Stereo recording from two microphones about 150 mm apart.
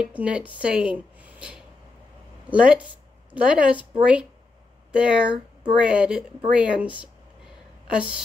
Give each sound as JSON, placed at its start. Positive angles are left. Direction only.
{"t": 0.0, "sound": "speech", "side_deg": -10}
{"t": 7.9, "sound": "speech", "side_deg": -5}